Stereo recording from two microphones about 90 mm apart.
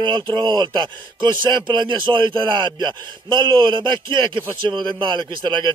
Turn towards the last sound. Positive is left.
turn(degrees=-55)  # may be behind; listen again after turning